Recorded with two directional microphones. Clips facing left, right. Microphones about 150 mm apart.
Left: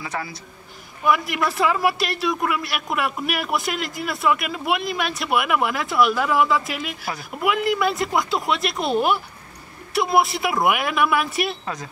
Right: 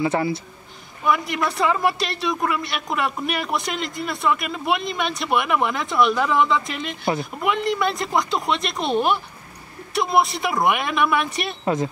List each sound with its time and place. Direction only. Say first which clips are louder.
0.0 s speech: right 9 dB; 25° right (ahead or behind)
1.0 s a man's voice: left 1 dB; centre (ahead or behind)
11.6 s speech: right 9 dB; 25° right (ahead or behind)